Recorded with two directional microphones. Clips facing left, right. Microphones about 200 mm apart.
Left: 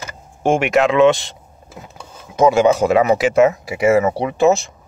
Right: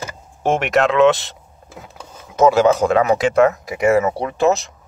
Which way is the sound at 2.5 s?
Centre (ahead or behind).